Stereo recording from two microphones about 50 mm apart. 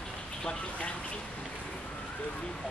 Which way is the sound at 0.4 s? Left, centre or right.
Left.